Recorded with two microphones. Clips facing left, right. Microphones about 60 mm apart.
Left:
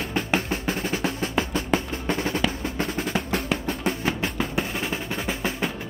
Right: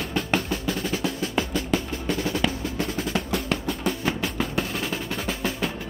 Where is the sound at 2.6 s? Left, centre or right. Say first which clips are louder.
Left 1 dB; left.